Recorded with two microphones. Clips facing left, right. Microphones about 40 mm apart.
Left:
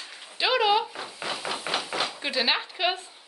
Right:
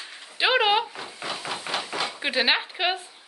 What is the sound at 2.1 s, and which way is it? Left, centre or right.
Speech, right.